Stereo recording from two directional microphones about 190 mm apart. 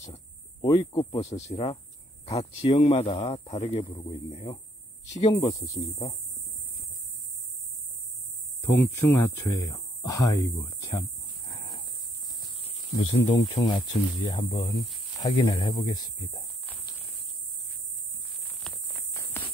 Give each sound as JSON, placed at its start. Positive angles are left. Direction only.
{"t": 0.0, "sound": "a sound", "side_deg": 35}
{"t": 0.7, "sound": "speech", "side_deg": 20}
{"t": 1.2, "sound": "speech", "side_deg": 35}
{"t": 3.4, "sound": "speech", "side_deg": 35}
{"t": 8.5, "sound": "speech", "side_deg": 15}
{"t": 12.5, "sound": "a sound", "side_deg": 30}
{"t": 13.7, "sound": "speech", "side_deg": 25}